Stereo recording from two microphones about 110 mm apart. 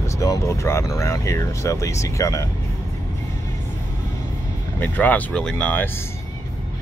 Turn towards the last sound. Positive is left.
turn(degrees=15)  # may be behind; listen again after turning